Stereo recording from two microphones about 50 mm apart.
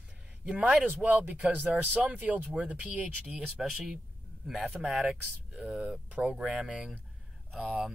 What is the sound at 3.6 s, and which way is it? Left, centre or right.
Speech, centre.